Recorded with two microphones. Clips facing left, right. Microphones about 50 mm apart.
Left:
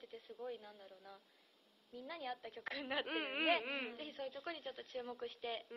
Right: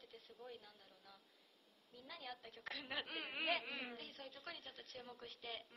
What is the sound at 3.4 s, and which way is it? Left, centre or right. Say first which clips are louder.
Speech: left 5 dB; left.